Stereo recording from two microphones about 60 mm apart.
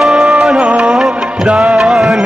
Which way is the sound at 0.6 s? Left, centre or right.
Right.